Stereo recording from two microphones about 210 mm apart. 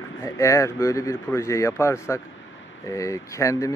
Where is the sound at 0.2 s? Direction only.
15° left (ahead or behind).